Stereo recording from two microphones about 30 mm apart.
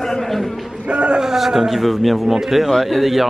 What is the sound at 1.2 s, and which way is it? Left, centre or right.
Speech, centre.